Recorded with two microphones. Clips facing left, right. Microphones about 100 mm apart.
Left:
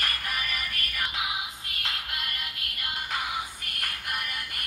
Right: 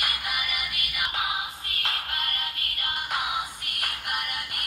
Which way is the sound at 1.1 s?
55° right (ahead or behind).